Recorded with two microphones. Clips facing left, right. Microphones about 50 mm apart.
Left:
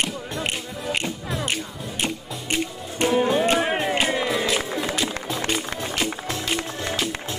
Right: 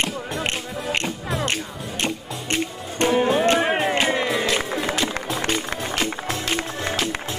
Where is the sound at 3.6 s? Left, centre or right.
Centre.